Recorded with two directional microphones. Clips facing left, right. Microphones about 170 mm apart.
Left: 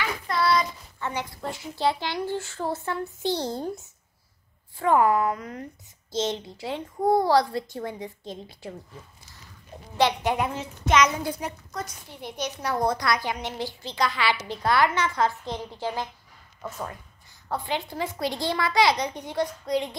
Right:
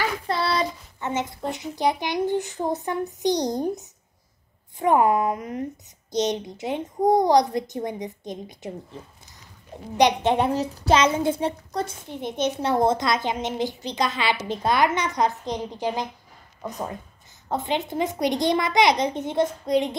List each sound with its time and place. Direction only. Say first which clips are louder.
0.3 s a child's voice: left 3 dB; 30° right (ahead or behind)
9.9 s a woman's voice: right 4 dB; 20° right (ahead or behind)
10.3 s a child's voice: right 6 dB; 35° right (ahead or behind)